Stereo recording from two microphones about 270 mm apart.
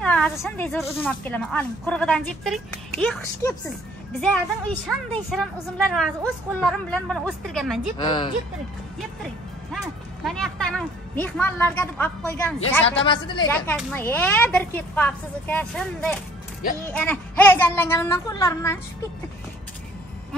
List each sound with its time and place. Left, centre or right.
0.0 s a woman's voice: centre
10.2 s a woman's voice: centre
12.9 s speech: centre
13.5 s speech: centre